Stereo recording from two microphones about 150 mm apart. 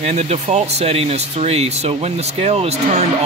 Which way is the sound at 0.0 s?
50° right (ahead or behind).